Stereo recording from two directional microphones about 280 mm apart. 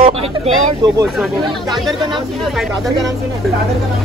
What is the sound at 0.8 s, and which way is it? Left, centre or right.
Speech, centre.